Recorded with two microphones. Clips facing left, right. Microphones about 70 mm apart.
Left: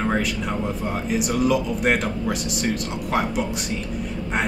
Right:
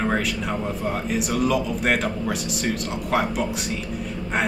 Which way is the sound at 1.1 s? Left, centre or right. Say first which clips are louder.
Left 2 dB; centre.